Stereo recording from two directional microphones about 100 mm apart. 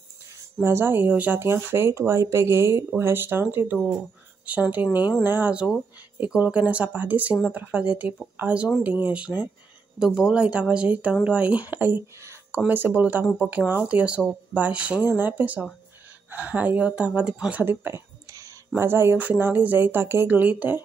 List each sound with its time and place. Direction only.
0.6 s speech: 25° right (ahead or behind)